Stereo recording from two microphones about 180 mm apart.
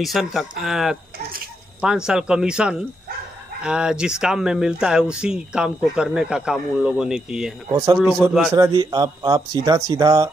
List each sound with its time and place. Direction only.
0.0 s speech: centre (ahead or behind)
7.7 s speech: 20° right (ahead or behind)
8.3 s speech: centre (ahead or behind)
8.5 s speech: 20° right (ahead or behind)